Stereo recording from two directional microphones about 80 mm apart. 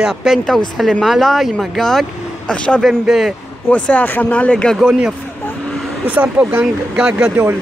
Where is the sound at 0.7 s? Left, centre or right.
Centre.